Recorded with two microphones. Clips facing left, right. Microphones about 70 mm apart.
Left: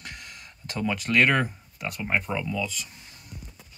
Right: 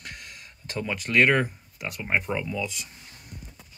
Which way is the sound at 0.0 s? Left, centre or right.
Centre.